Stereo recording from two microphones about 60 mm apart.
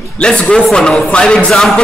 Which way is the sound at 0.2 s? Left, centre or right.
Centre.